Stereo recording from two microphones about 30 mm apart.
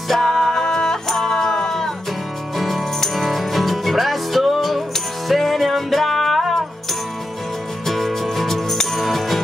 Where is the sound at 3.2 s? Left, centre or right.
Centre.